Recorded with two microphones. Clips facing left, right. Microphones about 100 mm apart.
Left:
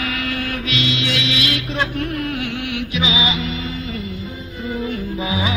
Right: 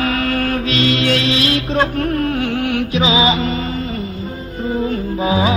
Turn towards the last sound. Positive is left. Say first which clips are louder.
# right 6 dB
turn(degrees=-40)  # may be behind; listen again after turning